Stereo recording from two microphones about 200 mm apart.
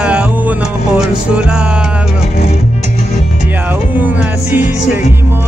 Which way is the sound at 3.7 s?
10° right (ahead or behind).